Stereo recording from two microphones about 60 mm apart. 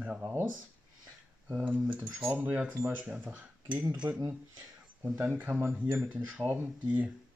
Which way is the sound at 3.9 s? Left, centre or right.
Centre.